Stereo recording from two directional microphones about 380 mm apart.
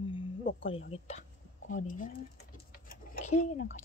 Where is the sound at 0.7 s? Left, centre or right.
Centre.